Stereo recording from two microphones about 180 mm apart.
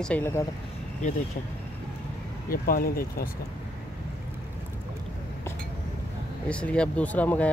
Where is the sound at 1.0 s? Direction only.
40° left (ahead or behind).